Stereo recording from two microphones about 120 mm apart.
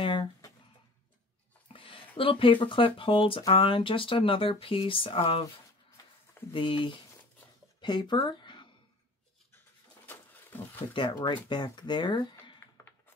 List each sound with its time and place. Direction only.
0.0 s a sound: 45° left (ahead or behind)
1.7 s speech: 50° left (ahead or behind)
6.5 s speech: 45° left (ahead or behind)
10.9 s speech: 40° left (ahead or behind)